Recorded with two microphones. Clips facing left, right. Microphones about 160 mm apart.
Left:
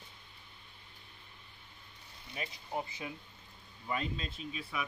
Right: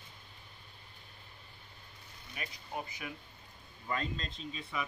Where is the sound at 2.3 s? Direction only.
25° left (ahead or behind).